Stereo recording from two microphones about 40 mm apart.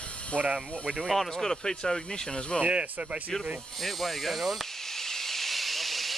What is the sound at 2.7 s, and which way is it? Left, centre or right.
Speech, right.